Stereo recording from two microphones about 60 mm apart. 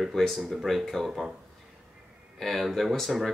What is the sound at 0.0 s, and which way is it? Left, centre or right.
Speech, centre.